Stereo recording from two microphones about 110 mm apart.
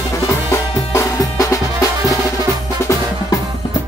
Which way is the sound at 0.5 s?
30° left (ahead or behind).